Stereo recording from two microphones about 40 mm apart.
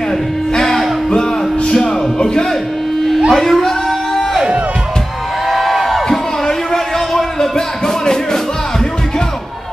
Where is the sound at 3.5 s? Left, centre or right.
Centre.